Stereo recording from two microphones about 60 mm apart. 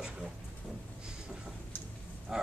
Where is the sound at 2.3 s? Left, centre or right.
Centre.